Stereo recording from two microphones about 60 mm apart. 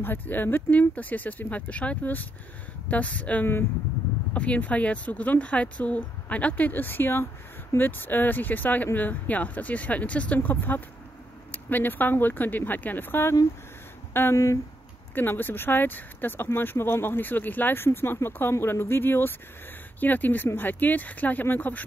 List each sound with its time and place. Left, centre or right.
0.0 s speech: left
14.3 s speech: left
15.1 s speech: left